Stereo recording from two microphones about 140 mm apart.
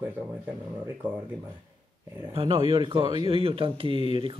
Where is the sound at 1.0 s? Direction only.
15° right (ahead or behind).